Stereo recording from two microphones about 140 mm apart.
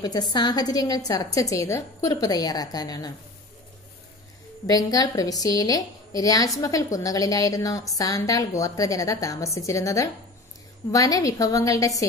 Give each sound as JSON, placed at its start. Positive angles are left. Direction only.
{"t": 0.0, "sound": "a woman's voice", "side_deg": 30}
{"t": 4.6, "sound": "a woman's voice", "side_deg": 25}